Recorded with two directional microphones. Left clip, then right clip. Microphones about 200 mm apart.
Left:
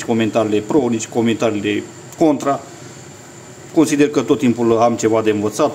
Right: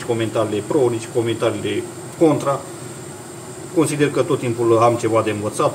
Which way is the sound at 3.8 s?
60° left (ahead or behind).